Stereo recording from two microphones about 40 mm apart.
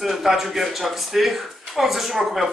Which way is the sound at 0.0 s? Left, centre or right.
Centre.